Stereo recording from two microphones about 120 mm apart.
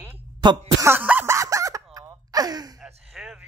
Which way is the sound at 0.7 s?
20° right (ahead or behind).